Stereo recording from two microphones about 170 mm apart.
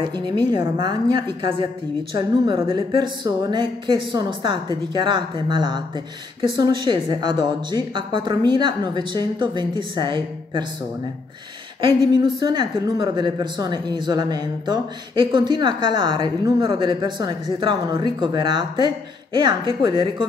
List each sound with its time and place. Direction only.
0.0 s speech: 25° right (ahead or behind)
11.8 s speech: 25° right (ahead or behind)